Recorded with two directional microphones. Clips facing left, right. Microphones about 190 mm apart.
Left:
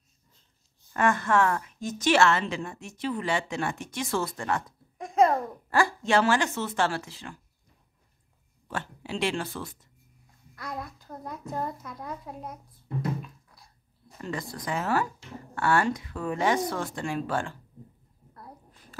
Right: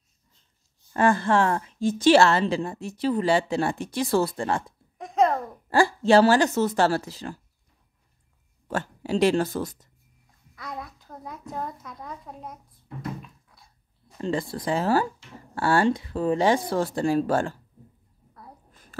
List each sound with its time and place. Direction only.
0.9 s a woman's voice: 30° right (ahead or behind)
4.9 s a sound: centre (ahead or behind)
5.7 s a woman's voice: 30° right (ahead or behind)
8.6 s a woman's voice: 40° right (ahead or behind)
10.5 s a child's voice: centre (ahead or behind)
13.2 s a sound: centre (ahead or behind)
14.2 s a woman's voice: 30° right (ahead or behind)